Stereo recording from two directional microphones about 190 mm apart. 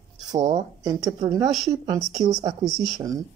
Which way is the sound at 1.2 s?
20° right (ahead or behind).